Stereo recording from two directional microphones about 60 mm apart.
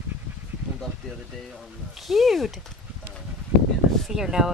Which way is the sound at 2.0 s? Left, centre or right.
Centre.